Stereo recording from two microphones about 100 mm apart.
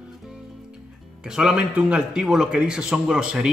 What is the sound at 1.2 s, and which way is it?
A man's voice, 5° right (ahead or behind).